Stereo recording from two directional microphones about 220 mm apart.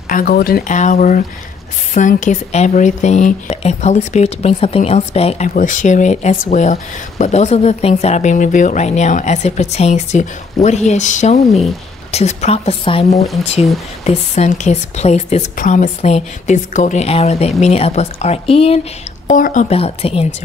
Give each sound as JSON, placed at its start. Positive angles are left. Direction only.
{"t": 0.1, "sound": "speech", "side_deg": 40}